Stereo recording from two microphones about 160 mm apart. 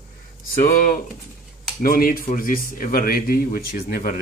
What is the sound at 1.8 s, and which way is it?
Speech, 65° left (ahead or behind).